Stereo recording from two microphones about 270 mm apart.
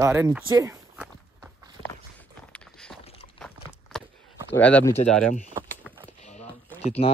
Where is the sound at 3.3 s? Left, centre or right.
Centre.